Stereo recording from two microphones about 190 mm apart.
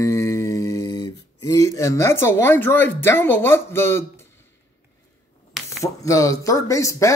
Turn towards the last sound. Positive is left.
turn(degrees=15)  # may be behind; listen again after turning